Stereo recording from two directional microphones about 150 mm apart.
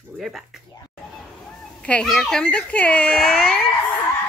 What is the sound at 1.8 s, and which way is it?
Speech, 5° left (ahead or behind).